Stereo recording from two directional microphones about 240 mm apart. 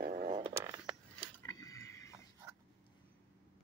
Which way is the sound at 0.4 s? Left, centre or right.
Centre.